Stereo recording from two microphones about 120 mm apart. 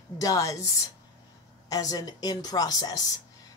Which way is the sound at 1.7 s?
30° left (ahead or behind).